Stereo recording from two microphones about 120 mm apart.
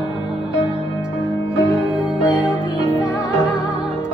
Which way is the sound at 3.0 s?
25° left (ahead or behind).